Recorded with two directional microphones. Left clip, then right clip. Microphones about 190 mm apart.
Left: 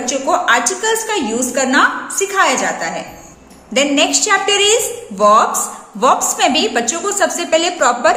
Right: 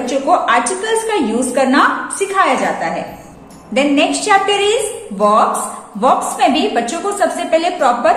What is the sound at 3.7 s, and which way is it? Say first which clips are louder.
A woman's voice: even; 35° left (ahead or behind).